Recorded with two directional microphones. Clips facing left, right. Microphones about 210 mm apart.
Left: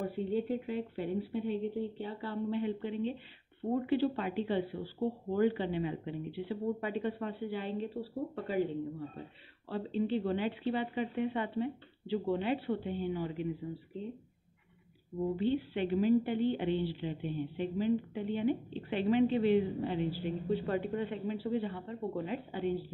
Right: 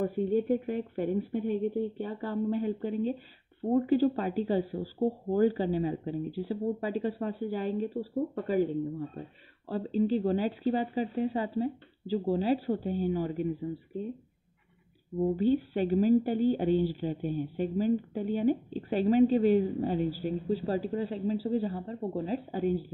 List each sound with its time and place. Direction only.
0.0 s a woman's voice: 45° right (ahead or behind)
9.7 s a woman's voice: 40° right (ahead or behind)
15.3 s a woman's voice: 40° right (ahead or behind)